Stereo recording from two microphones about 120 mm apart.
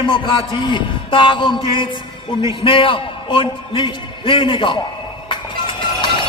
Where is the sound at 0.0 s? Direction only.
40° left (ahead or behind).